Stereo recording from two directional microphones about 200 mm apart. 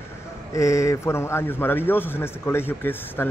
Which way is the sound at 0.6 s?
15° left (ahead or behind).